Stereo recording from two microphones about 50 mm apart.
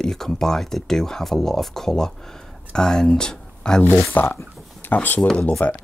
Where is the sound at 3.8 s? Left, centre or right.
Left.